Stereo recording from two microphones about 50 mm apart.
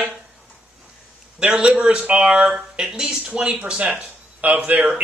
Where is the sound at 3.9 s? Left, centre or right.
Right.